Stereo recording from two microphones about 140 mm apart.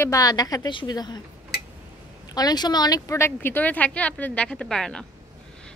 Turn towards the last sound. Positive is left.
turn(degrees=5)  # may be behind; listen again after turning